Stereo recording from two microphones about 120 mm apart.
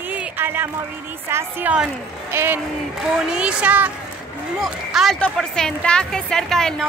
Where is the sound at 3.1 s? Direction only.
10° right (ahead or behind).